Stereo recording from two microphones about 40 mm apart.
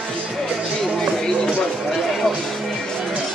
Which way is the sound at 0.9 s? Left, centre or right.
Centre.